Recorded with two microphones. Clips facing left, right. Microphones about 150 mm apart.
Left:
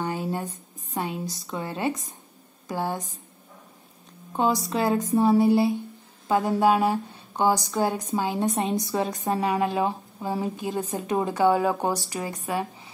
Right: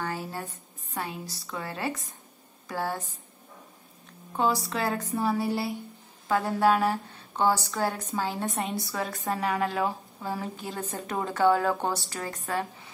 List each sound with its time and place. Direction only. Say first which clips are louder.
0.0 s a sound: left 5 dB; 20° left (ahead or behind)
0.9 s a woman's voice: left 5 dB; 20° left (ahead or behind)
4.3 s a woman's voice: left 3 dB; 20° left (ahead or behind)